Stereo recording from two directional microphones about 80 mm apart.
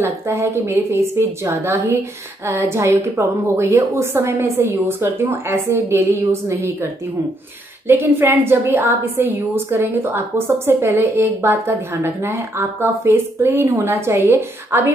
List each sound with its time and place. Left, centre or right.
0.0 s a woman's voice: right
7.9 s a woman's voice: right